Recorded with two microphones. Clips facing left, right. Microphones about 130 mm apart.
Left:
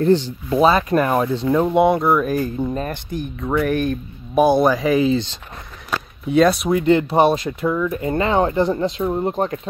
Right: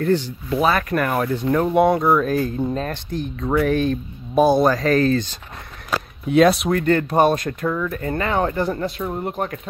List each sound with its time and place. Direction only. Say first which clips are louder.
0.0 s speech: left 4 dB; 25° left (ahead or behind)
6.2 s speech: even; centre (ahead or behind)
6.8 s speech: left 3 dB; 15° left (ahead or behind)
7.9 s speech: left 3 dB; 20° left (ahead or behind)